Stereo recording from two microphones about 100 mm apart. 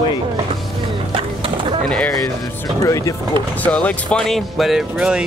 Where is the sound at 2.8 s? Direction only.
35° left (ahead or behind).